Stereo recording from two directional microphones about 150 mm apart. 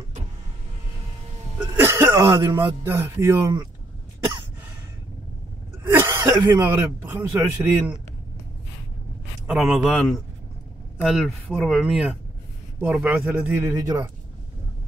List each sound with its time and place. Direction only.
1.6 s speech: 15° right (ahead or behind)
5.9 s speech: 15° right (ahead or behind)
9.5 s speech: 5° right (ahead or behind); by 14.1 s 25° right (ahead or behind)